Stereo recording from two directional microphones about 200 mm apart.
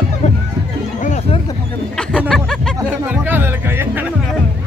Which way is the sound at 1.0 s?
35° left (ahead or behind).